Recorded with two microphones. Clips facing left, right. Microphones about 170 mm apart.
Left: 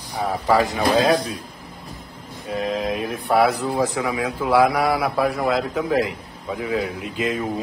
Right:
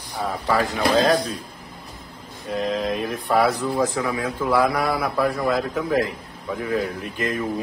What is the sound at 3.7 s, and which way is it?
A man's voice, 15° left (ahead or behind).